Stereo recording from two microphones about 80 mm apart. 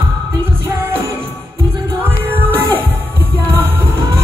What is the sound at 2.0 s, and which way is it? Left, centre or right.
Music, right.